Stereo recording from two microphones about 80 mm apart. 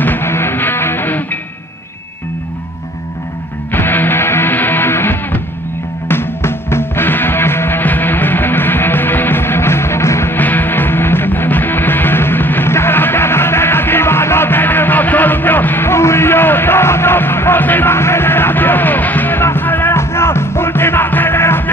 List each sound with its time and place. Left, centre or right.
0.0 s music: left
3.7 s music: left